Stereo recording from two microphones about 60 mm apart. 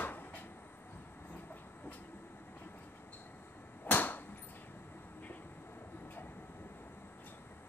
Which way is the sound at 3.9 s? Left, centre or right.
Left.